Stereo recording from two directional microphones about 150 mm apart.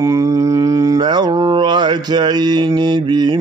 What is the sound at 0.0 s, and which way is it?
Mantra, 20° right (ahead or behind).